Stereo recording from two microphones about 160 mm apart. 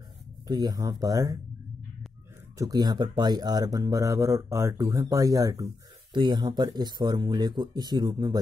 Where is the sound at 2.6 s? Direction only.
25° right (ahead or behind).